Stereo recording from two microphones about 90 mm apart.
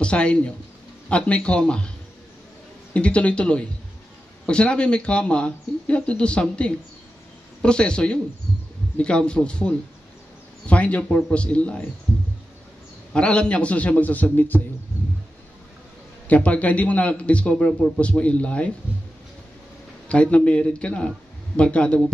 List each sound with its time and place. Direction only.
0.0 s a man's voice: 10° left (ahead or behind)
2.9 s a man's voice: 15° left (ahead or behind)
13.1 s a man's voice: 10° left (ahead or behind)
16.3 s a man's voice: 15° left (ahead or behind)
20.1 s a man's voice: 15° left (ahead or behind)